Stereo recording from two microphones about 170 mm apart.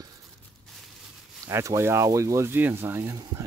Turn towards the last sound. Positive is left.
turn(degrees=-15)  # may be behind; listen again after turning